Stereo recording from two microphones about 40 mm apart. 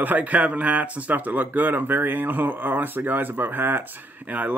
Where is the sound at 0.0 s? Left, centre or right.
Right.